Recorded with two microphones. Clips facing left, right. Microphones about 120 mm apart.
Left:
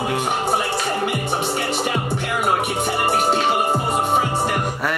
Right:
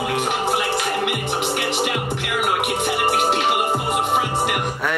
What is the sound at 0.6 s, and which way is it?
Music, 70° right (ahead or behind).